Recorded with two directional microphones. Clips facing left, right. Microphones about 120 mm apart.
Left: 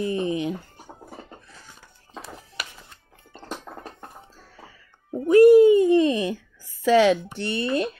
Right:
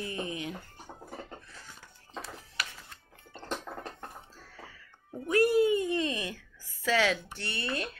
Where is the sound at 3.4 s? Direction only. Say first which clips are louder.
Left 1 dB; 10° left (ahead or behind).